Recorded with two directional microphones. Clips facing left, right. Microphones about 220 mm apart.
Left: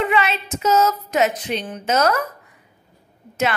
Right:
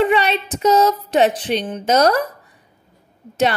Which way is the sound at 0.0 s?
35° right (ahead or behind).